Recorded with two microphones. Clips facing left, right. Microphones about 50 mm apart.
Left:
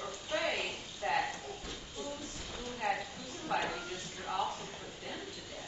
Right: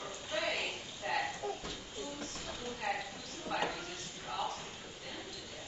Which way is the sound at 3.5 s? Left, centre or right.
Centre.